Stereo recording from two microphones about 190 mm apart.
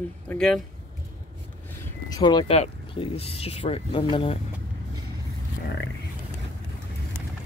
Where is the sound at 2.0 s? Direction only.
20° left (ahead or behind).